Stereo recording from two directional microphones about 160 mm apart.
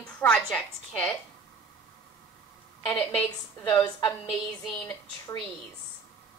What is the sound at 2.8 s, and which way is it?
Speech, 15° left (ahead or behind).